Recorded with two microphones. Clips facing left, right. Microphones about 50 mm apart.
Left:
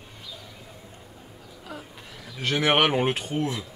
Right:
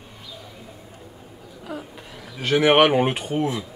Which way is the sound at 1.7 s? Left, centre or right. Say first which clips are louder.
Right 6 dB; centre.